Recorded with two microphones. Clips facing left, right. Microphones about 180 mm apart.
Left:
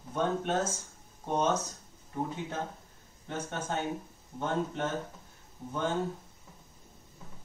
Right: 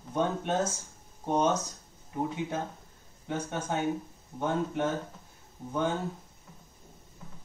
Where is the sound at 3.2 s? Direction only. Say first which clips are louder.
Right 3 dB; 10° right (ahead or behind).